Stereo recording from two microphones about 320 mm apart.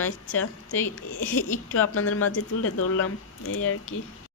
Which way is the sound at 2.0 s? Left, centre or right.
Left.